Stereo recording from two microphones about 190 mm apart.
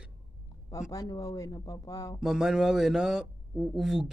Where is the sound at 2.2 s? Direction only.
5° right (ahead or behind).